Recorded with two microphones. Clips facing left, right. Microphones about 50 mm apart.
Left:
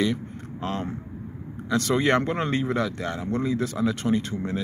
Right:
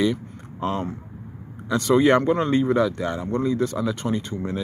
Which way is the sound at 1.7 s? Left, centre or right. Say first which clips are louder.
Right 4 dB; centre.